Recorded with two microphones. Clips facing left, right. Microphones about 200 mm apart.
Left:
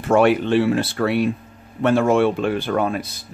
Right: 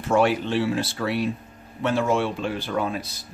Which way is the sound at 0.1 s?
60° left (ahead or behind).